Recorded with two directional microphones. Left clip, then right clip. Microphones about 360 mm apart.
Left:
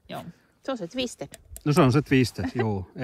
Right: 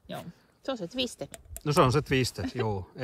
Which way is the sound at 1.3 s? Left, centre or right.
Centre.